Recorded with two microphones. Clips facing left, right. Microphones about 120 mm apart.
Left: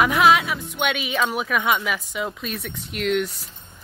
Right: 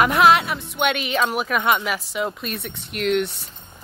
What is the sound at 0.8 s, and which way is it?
Speech, 50° right (ahead or behind).